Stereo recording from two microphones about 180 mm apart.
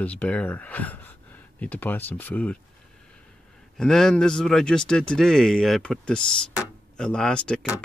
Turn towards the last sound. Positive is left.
turn(degrees=5)  # may be behind; listen again after turning